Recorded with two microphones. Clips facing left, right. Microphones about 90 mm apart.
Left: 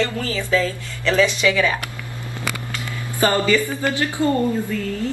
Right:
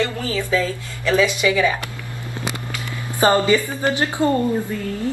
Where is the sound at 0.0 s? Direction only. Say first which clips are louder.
Even; 20° right (ahead or behind).